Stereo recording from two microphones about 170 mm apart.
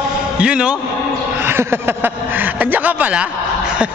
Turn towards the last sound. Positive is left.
turn(degrees=-5)  # may be behind; listen again after turning